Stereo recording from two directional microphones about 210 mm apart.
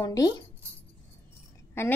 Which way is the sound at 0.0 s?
20° left (ahead or behind).